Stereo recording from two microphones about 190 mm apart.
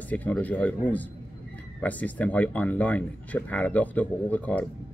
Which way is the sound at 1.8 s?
10° left (ahead or behind).